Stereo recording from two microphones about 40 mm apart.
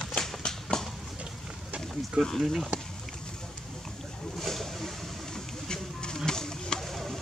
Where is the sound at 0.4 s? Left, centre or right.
Left.